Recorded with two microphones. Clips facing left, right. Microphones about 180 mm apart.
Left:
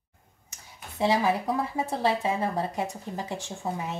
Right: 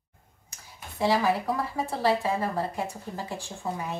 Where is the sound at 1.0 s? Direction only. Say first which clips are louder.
Even; 20° left (ahead or behind).